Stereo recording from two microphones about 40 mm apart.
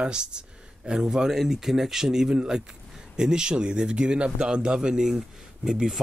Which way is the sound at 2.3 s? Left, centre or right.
Right.